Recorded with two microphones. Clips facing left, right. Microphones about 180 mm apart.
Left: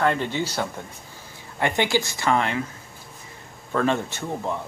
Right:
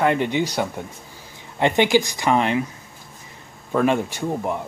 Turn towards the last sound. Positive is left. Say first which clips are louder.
# right 4 dB
turn(degrees=-15)  # may be behind; listen again after turning